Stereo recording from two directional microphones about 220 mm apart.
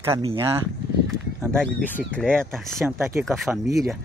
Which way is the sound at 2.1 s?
5° left (ahead or behind).